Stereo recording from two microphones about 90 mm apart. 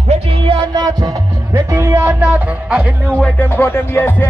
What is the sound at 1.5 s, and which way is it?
Music, 30° right (ahead or behind).